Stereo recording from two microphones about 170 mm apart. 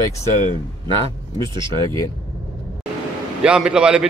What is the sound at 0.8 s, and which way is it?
Speech, 30° right (ahead or behind).